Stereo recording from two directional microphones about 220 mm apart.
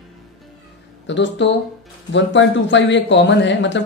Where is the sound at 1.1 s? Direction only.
55° left (ahead or behind).